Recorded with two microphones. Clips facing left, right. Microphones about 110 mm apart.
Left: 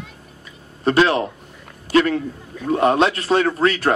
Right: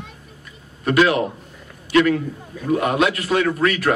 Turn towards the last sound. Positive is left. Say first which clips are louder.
# left 1 dB
turn(degrees=30)  # may be behind; listen again after turning